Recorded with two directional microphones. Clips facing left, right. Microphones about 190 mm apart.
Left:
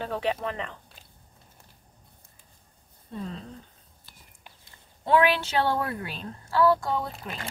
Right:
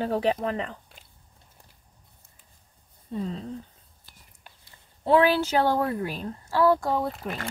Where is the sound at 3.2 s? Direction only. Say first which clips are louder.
Right 4 dB; 35° right (ahead or behind).